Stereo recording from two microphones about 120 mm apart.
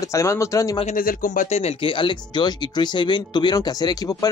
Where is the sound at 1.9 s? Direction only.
40° left (ahead or behind).